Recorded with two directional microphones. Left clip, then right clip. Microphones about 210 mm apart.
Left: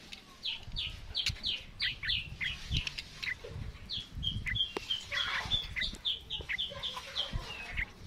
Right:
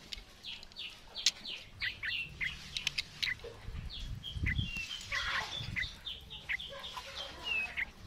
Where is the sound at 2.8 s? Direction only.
40° right (ahead or behind).